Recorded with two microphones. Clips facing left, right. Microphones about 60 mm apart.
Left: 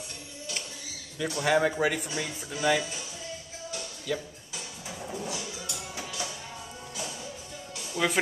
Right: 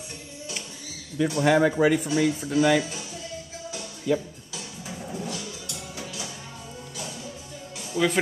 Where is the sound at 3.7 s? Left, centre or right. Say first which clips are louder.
Right 7 dB; centre.